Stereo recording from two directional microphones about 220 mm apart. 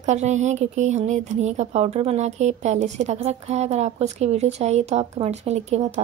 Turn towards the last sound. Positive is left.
turn(degrees=-30)  # may be behind; listen again after turning